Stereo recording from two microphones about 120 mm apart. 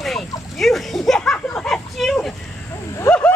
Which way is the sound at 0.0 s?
Centre (ahead or behind).